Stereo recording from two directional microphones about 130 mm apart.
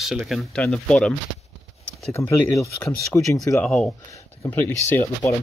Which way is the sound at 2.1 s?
25° left (ahead or behind).